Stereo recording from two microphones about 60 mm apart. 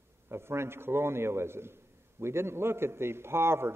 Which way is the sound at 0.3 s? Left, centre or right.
Right.